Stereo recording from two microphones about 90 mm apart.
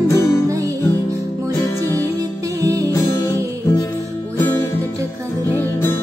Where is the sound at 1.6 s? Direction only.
30° left (ahead or behind).